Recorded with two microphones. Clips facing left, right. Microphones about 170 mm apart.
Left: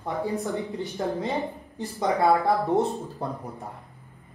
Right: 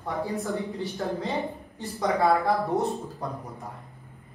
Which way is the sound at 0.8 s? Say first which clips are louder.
Left 2 dB; 20° left (ahead or behind).